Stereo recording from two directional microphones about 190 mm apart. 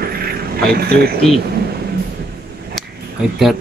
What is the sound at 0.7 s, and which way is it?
Speech, 55° right (ahead or behind).